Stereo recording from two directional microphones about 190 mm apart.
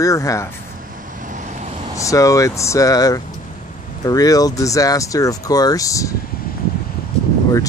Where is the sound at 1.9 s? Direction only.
15° left (ahead or behind).